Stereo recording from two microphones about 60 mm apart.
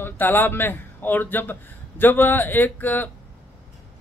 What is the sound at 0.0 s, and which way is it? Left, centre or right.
A man's voice, left.